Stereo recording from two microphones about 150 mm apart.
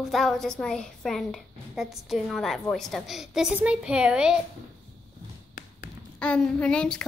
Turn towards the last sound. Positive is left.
turn(degrees=5)  # may be behind; listen again after turning